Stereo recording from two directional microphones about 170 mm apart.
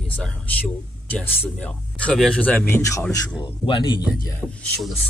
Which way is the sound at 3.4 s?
30° left (ahead or behind).